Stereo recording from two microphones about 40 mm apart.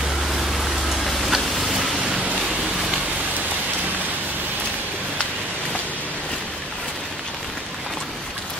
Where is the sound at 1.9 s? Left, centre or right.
Centre.